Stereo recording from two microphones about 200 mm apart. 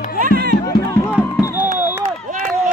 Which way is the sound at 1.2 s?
15° left (ahead or behind).